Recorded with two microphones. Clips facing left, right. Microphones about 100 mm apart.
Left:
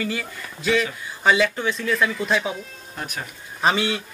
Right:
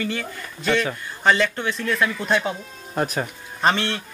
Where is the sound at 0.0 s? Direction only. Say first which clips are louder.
Even; 5° left (ahead or behind).